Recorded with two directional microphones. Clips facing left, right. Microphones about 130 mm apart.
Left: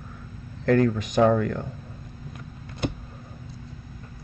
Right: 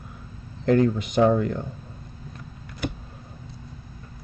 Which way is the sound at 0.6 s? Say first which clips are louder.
Right 1 dB; 25° right (ahead or behind).